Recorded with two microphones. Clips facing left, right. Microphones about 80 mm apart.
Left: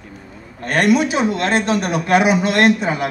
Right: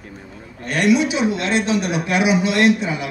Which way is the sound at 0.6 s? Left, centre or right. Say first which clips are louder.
Left 2 dB; left.